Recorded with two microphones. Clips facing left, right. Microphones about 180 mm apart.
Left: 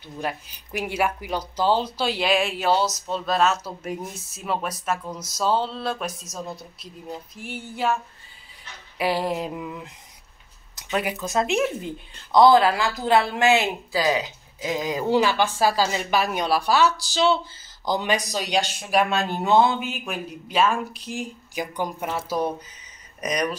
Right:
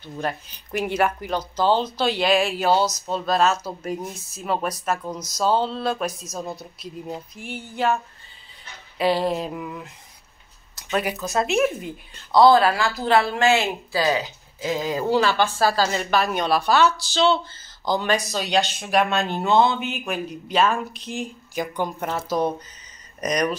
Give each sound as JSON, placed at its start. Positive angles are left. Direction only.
{"t": 0.0, "sound": "speech", "side_deg": 10}
{"t": 8.9, "sound": "speech", "side_deg": 10}